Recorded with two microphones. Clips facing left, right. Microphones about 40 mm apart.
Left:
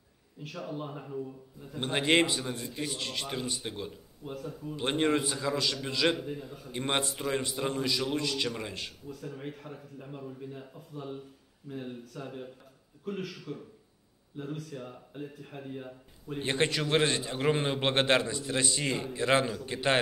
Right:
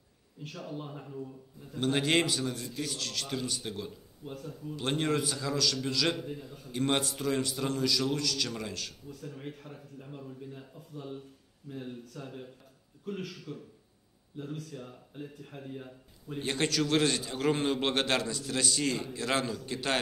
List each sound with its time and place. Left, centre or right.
0.4 s speech: centre
1.8 s a man's voice: left
4.2 s a man's voice: centre
4.7 s a man's voice: left
6.1 s speech: centre
6.7 s a man's voice: left
9.0 s a man's voice: centre
16.4 s a man's voice: left